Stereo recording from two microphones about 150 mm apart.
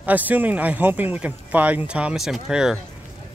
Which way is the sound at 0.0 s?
10° right (ahead or behind).